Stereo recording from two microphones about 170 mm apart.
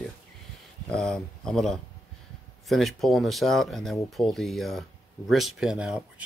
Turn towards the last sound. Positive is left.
turn(degrees=-5)  # may be behind; listen again after turning